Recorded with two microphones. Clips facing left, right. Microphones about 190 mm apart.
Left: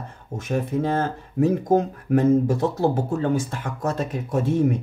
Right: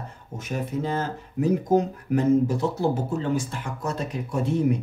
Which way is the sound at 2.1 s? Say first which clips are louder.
Left 3 dB; 45° left (ahead or behind).